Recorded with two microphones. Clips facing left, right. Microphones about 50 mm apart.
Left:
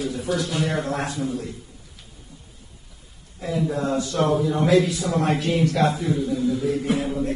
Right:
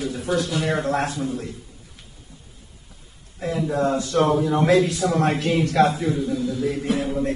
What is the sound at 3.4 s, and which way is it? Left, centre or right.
A man's voice, right.